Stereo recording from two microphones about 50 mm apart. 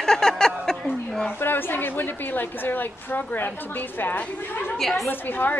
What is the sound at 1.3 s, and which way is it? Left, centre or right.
A woman's voice, left.